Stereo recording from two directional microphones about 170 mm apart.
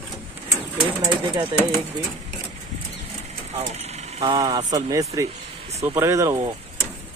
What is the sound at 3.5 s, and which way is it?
Vehicle, 40° right (ahead or behind).